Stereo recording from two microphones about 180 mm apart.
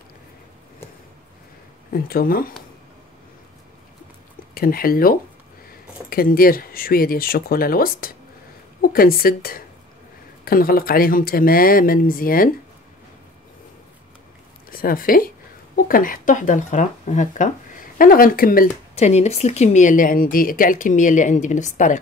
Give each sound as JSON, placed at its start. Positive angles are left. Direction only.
{"t": 1.9, "sound": "speech", "side_deg": 55}
{"t": 4.6, "sound": "speech", "side_deg": 55}
{"t": 14.7, "sound": "speech", "side_deg": 55}
{"t": 18.9, "sound": "speech", "side_deg": 35}